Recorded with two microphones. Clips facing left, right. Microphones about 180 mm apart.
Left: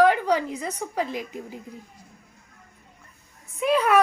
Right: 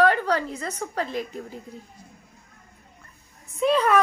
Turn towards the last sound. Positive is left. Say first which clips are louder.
# right 1 dB
turn(degrees=10)  # may be behind; listen again after turning